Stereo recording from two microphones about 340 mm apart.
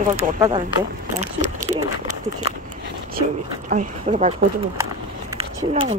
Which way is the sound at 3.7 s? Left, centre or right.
Right.